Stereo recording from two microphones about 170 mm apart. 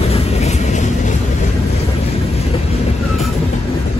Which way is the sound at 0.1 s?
35° left (ahead or behind).